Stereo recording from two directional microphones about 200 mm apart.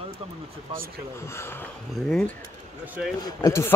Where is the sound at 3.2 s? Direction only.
15° left (ahead or behind).